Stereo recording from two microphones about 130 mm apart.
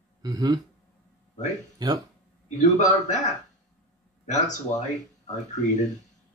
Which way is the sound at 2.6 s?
70° left (ahead or behind).